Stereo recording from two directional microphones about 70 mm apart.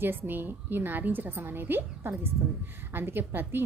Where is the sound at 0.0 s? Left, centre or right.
Right.